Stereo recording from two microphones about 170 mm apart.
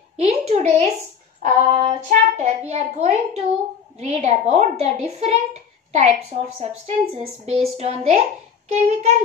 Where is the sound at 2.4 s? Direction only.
40° right (ahead or behind).